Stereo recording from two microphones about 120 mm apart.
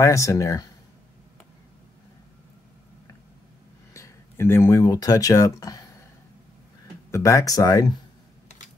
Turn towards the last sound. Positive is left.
turn(degrees=30)  # may be behind; listen again after turning